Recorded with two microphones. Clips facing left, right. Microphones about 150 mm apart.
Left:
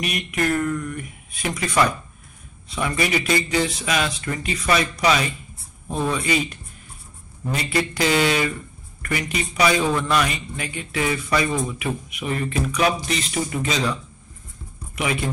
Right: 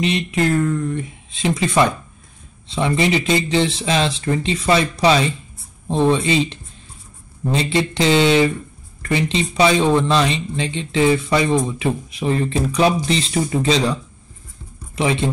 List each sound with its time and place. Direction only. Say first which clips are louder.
0.0 s a man's voice: right 5 dB; 25° right (ahead or behind)
15.0 s a man's voice: right 5 dB; 30° right (ahead or behind)